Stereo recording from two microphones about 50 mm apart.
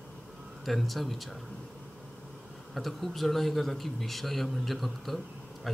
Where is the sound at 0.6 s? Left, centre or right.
Centre.